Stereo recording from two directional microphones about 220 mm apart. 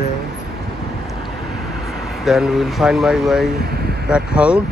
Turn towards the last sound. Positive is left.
turn(degrees=-5)  # may be behind; listen again after turning